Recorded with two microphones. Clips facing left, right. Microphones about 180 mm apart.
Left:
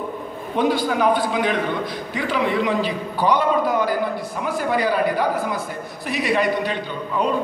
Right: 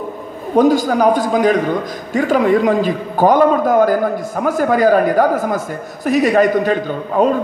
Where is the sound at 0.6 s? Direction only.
45° right (ahead or behind).